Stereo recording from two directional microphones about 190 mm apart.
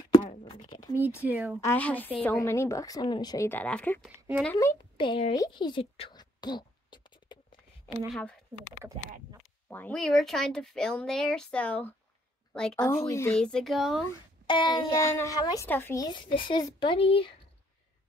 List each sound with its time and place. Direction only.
0.5 s a sound: 25° left (ahead or behind)
0.9 s speech: 10° right (ahead or behind)
1.6 s speech: 10° left (ahead or behind)
4.9 s a sound: 25° left (ahead or behind)
8.1 s speech: 5° left (ahead or behind)
9.7 s speech: 10° left (ahead or behind)
13.0 s speech: 15° left (ahead or behind)
14.4 s speech: 25° left (ahead or behind)